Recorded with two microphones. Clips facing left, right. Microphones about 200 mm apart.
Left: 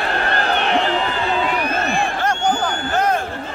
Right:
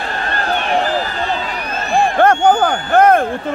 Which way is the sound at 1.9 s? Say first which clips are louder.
Right 8 dB; 55° right (ahead or behind).